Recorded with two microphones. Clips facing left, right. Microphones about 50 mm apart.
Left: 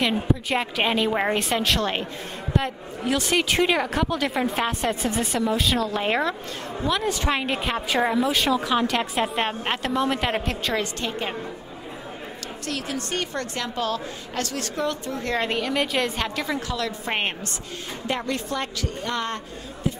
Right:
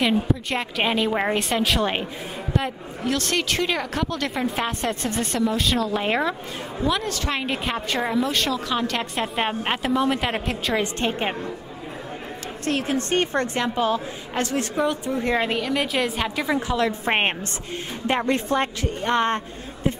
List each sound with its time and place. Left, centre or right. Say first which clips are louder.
0.0 s a woman's voice: right 2 dB; centre
1.8 s a woman's voice: right 2 dB; centre
2.5 s a woman's voice: left 1 dB; centre
7.1 s a woman's voice: left 3 dB; centre
7.3 s a woman's voice: even; centre
11.0 s a woman's voice: right 4 dB; right
12.6 s a woman's voice: right 6 dB; right; by 15.4 s centre
15.4 s a woman's voice: right 1 dB; centre; by 19.9 s right